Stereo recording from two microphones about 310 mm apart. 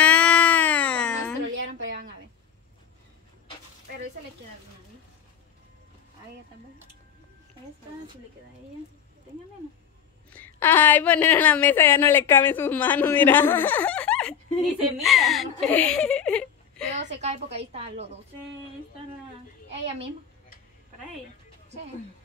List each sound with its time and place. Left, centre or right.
0.0 s music: centre
1.5 s a sound: right
10.3 s a woman's voice: centre
17.2 s a woman's voice: right